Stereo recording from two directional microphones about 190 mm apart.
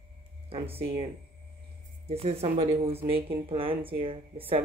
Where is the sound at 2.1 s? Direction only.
30° right (ahead or behind).